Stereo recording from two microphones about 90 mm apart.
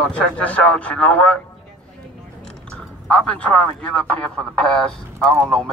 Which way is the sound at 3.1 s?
15° left (ahead or behind).